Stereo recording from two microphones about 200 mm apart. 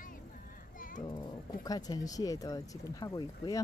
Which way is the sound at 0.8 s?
40° left (ahead or behind).